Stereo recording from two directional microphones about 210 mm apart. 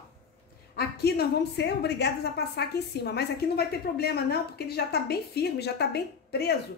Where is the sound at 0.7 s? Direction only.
50° left (ahead or behind).